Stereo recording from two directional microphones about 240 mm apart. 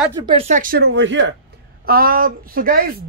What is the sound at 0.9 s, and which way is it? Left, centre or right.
Speech, right.